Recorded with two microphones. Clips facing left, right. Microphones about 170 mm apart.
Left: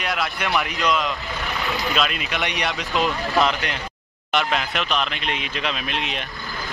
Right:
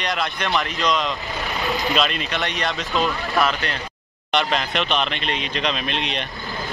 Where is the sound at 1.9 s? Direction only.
5° left (ahead or behind).